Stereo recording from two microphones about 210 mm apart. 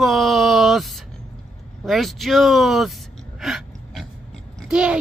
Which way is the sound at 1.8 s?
Centre (ahead or behind).